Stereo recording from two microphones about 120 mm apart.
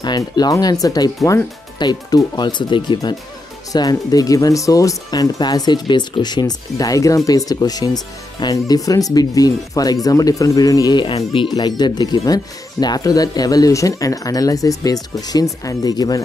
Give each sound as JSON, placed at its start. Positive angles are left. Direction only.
{"t": 0.0, "sound": "speech", "side_deg": 35}